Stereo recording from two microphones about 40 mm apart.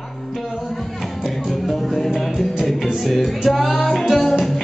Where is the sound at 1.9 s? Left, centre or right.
Centre.